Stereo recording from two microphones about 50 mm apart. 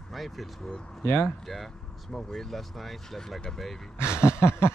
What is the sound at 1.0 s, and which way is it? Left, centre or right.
Speech, left.